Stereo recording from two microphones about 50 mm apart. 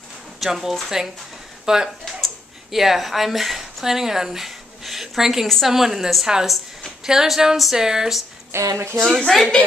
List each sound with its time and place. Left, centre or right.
0.4 s speech: centre
2.0 s a sound: centre
5.5 s a woman's voice: centre
8.5 s speech: right
9.3 s a woman's voice: centre